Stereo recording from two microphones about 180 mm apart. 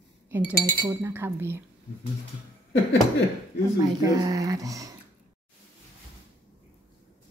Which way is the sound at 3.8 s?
20° right (ahead or behind).